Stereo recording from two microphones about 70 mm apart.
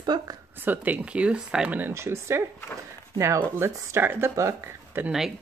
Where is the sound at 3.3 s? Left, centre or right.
Right.